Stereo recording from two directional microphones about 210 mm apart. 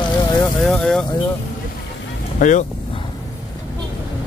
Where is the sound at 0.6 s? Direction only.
5° left (ahead or behind).